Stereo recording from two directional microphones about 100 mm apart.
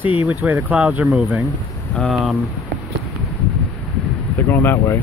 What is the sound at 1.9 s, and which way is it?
Speech, 5° left (ahead or behind).